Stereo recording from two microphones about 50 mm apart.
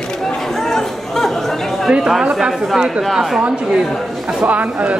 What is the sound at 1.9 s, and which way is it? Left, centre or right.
A man's voice, centre.